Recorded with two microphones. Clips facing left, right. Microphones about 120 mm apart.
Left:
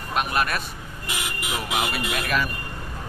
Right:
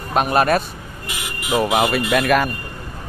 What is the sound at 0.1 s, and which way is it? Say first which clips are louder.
Speech: right 8 dB; 35° right (ahead or behind).